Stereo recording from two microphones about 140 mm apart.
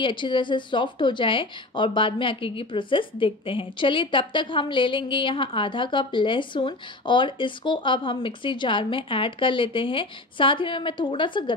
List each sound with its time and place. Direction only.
0.0 s speech: 35° left (ahead or behind)